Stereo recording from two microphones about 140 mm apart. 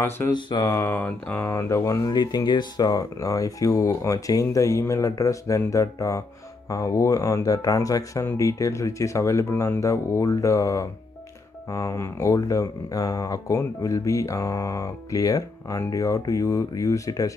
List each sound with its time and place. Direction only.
0.3 s speech: 30° left (ahead or behind)
0.7 s speech: 15° left (ahead or behind)